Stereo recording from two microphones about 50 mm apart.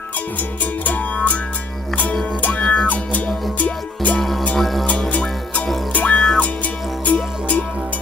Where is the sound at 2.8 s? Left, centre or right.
Left.